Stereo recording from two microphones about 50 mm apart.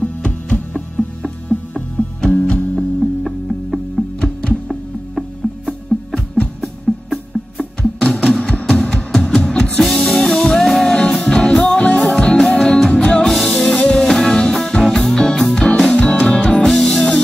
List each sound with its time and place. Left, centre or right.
0.0 s music: left
3.0 s music: centre
4.2 s music: centre
6.1 s music: left
6.6 s music: centre
16.0 s music: left
16.6 s music: centre